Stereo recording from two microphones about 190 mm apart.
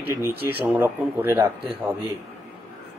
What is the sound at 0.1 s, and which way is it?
Speech, 10° right (ahead or behind).